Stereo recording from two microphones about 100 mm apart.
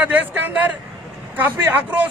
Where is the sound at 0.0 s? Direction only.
15° right (ahead or behind).